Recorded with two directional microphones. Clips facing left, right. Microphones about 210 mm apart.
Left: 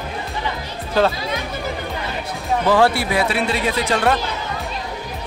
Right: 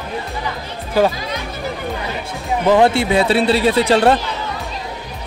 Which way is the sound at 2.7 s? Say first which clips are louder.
Right 4 dB; 20° right (ahead or behind).